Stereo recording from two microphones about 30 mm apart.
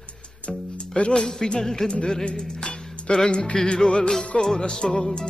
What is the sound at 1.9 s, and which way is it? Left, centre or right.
Music, left.